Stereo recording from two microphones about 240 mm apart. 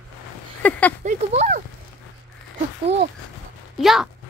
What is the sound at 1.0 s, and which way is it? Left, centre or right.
Speech, right.